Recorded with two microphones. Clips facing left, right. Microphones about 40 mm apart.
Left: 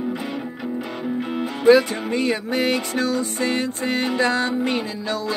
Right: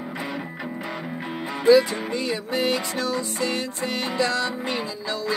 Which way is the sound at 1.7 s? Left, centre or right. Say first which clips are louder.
Left 2 dB; left.